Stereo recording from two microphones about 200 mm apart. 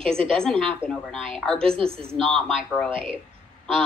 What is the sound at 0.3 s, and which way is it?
A woman's voice, 5° left (ahead or behind).